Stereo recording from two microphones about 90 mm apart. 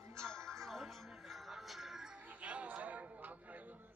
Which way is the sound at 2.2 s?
15° right (ahead or behind).